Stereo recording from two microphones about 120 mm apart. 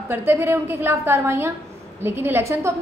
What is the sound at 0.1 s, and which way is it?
A woman's voice, 20° right (ahead or behind).